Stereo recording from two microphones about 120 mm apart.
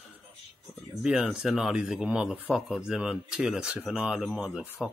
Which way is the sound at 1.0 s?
5° right (ahead or behind).